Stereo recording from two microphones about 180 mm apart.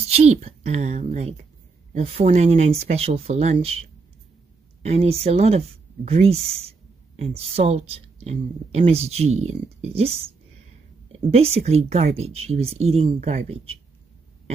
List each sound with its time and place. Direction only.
0.1 s speech: 35° right (ahead or behind)
4.8 s speech: 35° right (ahead or behind)